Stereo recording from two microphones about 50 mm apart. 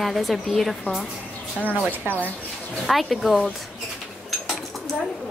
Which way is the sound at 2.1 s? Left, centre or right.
Left.